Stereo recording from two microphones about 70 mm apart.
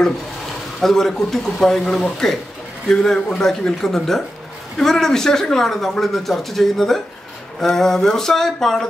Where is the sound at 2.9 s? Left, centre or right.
Centre.